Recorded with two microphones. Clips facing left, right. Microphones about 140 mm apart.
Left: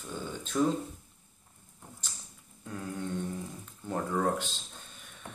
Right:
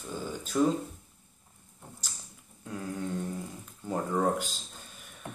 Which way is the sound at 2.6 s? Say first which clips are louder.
Right 2 dB; centre (ahead or behind).